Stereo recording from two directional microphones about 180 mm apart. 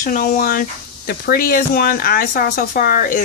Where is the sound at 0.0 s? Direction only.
50° left (ahead or behind).